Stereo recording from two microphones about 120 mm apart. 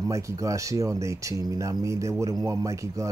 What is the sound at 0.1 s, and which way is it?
Speech, 25° right (ahead or behind).